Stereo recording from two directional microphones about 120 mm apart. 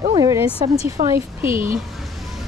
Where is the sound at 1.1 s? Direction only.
20° right (ahead or behind).